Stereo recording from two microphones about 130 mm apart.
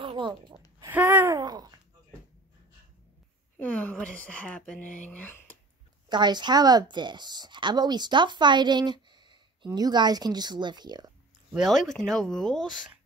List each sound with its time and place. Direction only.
0.0 s a sound: 40° right (ahead or behind)
0.8 s a sound: 15° right (ahead or behind)
1.3 s babbling: 30° right (ahead or behind)
3.5 s speech: 10° left (ahead or behind)
6.0 s a woman's voice: 35° right (ahead or behind)
11.5 s speech: centre (ahead or behind)